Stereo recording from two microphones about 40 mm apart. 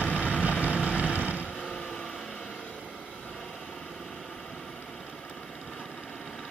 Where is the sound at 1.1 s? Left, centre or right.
Right.